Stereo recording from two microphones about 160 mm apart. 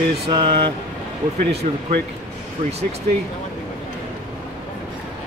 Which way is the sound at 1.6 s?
45° right (ahead or behind).